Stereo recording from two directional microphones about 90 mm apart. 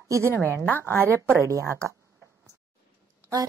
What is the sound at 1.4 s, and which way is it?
Speech, 35° right (ahead or behind).